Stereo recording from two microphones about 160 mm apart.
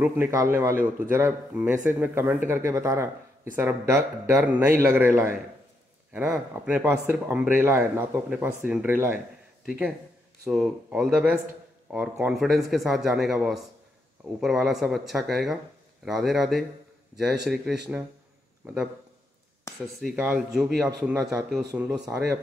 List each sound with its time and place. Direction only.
0.0 s a man's voice: 15° right (ahead or behind)
20.0 s speech: 5° right (ahead or behind)